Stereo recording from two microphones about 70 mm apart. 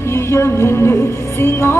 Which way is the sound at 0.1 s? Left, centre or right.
Left.